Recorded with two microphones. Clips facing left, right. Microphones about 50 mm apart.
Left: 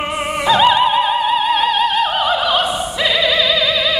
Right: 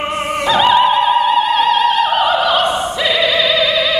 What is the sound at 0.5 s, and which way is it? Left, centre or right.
Opera, centre.